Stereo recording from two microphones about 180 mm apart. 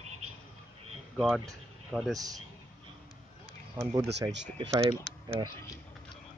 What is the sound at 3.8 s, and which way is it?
Speech, 15° right (ahead or behind).